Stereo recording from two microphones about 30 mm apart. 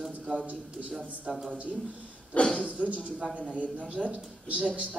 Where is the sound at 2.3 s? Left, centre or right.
Left.